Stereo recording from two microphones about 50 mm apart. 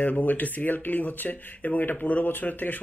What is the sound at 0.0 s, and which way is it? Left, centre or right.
Speech, left.